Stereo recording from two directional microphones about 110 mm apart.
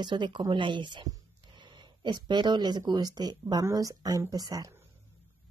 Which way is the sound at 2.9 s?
40° right (ahead or behind).